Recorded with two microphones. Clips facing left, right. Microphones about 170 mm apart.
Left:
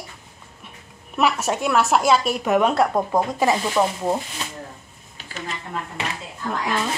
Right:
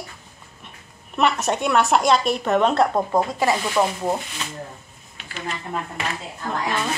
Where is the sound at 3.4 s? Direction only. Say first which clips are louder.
Left 1 dB; 20° left (ahead or behind).